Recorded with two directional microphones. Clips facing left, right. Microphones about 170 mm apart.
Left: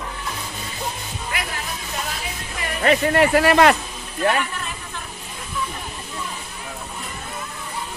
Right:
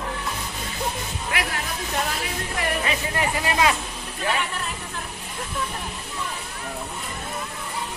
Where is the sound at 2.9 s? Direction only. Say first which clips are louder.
Left 9 dB; 70° left (ahead or behind).